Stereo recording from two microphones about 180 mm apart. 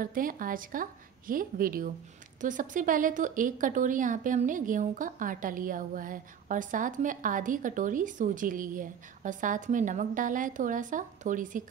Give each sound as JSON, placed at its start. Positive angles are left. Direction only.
{"t": 0.0, "sound": "a woman's voice", "side_deg": -50}